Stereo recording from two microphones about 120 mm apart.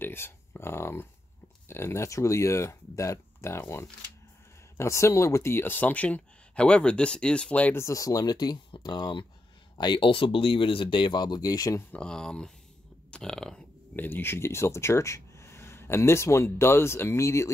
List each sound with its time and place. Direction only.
0.0 s speech: 20° left (ahead or behind)
7.8 s speech: 30° left (ahead or behind)
11.9 s speech: 5° left (ahead or behind); by 17.5 s 25° left (ahead or behind)